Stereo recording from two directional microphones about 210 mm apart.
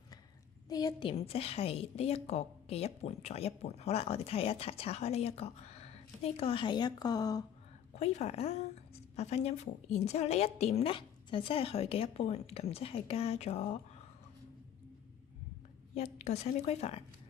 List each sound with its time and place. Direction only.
0.7 s a woman's voice: 15° left (ahead or behind)
7.9 s a woman's voice: 30° left (ahead or behind)
15.9 s a woman's voice: 30° left (ahead or behind)